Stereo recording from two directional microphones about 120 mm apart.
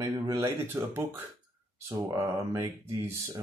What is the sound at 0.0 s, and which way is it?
Speech, 30° right (ahead or behind).